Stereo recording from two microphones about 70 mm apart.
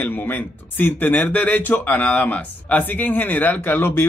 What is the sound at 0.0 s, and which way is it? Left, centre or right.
Speech, left.